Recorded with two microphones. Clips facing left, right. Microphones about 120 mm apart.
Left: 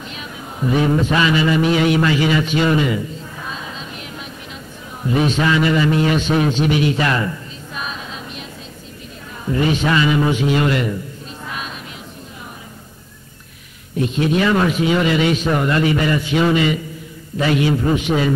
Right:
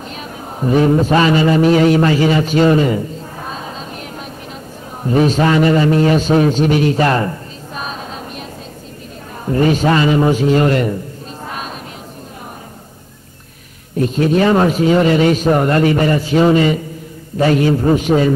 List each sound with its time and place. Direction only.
0.1 s a sound: 40° right (ahead or behind)
5.0 s a man's voice: 40° right (ahead or behind)
11.4 s chant: 40° right (ahead or behind)
13.9 s a man's voice: 45° right (ahead or behind)